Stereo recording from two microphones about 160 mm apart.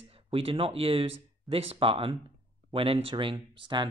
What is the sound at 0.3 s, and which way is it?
Speech, 35° right (ahead or behind).